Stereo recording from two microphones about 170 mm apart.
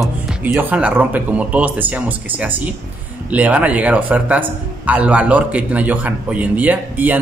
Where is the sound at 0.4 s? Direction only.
10° right (ahead or behind).